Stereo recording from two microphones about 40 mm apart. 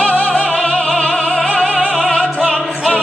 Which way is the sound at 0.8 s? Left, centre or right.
Centre.